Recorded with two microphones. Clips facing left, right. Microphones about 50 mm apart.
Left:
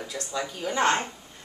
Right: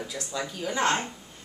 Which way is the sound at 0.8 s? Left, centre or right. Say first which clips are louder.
Left 2 dB; centre.